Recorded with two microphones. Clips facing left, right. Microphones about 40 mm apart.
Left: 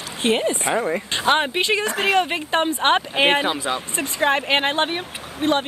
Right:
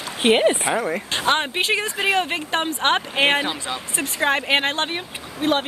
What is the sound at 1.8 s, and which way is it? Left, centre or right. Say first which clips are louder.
Speech: left 2 dB; left.